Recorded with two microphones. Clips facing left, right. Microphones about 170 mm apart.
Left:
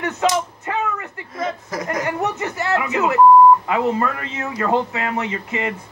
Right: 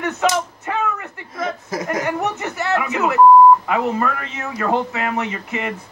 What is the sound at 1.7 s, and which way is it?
Speech, 25° right (ahead or behind).